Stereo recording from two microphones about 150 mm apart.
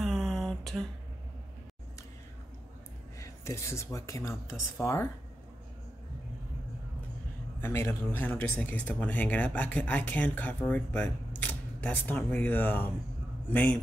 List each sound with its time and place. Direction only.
0.0 s a sound: centre (ahead or behind)
3.2 s speech: 20° left (ahead or behind)
7.6 s speech: 15° left (ahead or behind)